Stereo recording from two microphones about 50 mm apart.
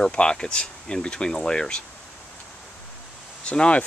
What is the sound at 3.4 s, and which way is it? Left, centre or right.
Speech, left.